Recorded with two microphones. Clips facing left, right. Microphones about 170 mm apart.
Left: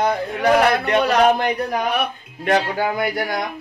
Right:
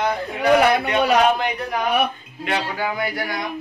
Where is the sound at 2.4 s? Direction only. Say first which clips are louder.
Left 5 dB; 45° left (ahead or behind).